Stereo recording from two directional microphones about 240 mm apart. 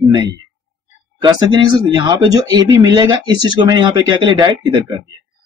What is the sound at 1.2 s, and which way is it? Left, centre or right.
Speech, centre.